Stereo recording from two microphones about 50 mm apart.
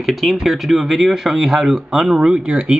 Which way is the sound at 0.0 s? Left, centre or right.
Centre.